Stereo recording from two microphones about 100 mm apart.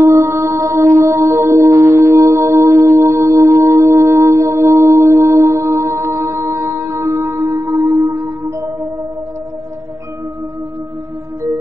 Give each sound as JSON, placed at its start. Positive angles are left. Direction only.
{"t": 0.0, "sound": "music", "side_deg": -30}